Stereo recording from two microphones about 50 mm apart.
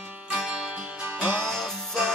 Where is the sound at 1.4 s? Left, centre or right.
Centre.